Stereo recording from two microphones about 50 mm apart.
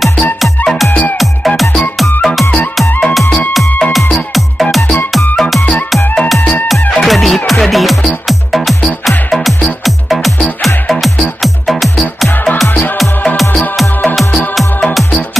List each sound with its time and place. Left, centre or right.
0.0 s music: centre
3.9 s music: centre
6.7 s music: centre
12.6 s music: left